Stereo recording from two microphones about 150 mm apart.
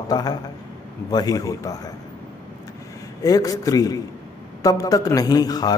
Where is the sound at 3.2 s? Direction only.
25° left (ahead or behind).